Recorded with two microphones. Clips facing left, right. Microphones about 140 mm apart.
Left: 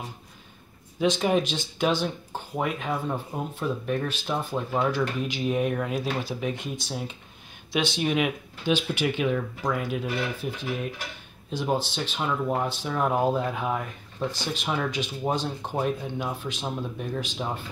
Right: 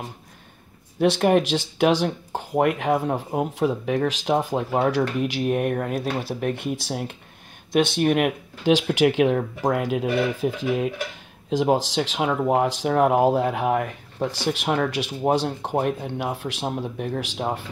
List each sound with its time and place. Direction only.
0.9 s speech: 65° right (ahead or behind)
3.3 s speech: 85° right
4.7 s speech: 65° right (ahead or behind)
7.7 s speech: 55° right (ahead or behind)
8.6 s speech: 90° right; by 17.6 s 70° right (ahead or behind)